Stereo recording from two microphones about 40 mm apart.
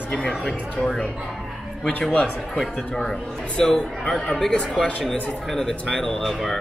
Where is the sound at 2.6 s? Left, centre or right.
Centre.